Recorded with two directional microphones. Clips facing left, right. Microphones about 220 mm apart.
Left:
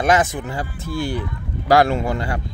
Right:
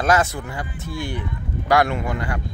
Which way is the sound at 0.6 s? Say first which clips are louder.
Left 5 dB; 30° left (ahead or behind).